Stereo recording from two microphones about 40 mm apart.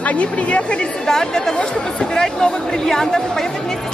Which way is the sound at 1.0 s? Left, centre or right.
Centre.